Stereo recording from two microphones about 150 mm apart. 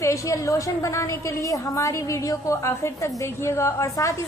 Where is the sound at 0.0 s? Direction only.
20° left (ahead or behind).